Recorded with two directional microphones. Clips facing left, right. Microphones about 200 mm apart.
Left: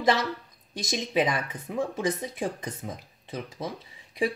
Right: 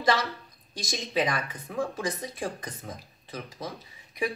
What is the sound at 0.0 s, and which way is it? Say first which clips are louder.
A woman's voice: left 2 dB; 20° left (ahead or behind).